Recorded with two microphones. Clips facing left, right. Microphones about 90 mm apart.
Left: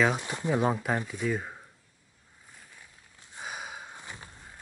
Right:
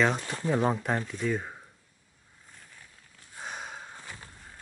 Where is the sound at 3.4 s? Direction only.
5° left (ahead or behind).